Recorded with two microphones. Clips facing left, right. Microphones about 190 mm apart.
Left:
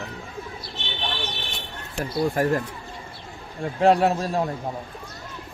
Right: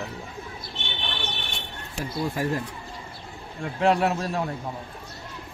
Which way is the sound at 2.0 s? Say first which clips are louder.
Left 5 dB; 50° left (ahead or behind).